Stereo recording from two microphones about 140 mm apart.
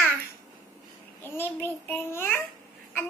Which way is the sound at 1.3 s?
15° left (ahead or behind).